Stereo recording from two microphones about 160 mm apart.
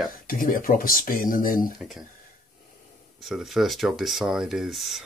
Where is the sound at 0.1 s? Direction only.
60° left (ahead or behind).